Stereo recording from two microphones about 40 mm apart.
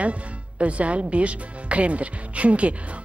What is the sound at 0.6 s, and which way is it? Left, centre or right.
Speech, right.